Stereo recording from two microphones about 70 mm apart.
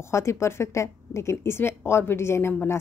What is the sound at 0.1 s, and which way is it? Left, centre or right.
A woman's voice, left.